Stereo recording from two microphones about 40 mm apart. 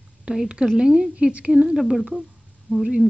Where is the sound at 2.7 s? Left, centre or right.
Right.